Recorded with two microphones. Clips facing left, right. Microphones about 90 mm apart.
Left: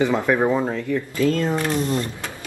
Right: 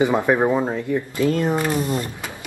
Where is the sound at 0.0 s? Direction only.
20° right (ahead or behind).